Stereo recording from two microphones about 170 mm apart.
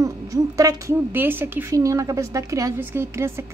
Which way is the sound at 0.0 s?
20° right (ahead or behind).